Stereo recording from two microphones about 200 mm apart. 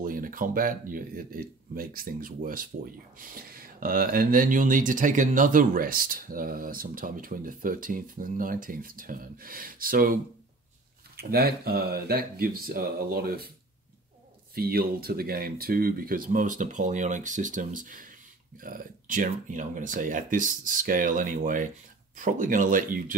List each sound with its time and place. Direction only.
0.0 s speech: 45° right (ahead or behind)
11.1 s speech: 50° right (ahead or behind)
14.5 s speech: 50° right (ahead or behind)